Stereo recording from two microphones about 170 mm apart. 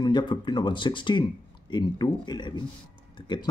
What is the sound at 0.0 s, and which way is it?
Speech, 25° left (ahead or behind).